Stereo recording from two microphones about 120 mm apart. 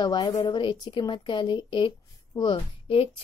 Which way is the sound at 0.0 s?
35° left (ahead or behind).